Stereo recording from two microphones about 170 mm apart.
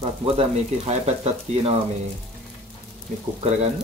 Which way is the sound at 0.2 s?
35° right (ahead or behind).